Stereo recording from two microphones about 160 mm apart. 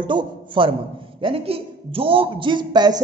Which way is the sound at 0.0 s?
30° right (ahead or behind).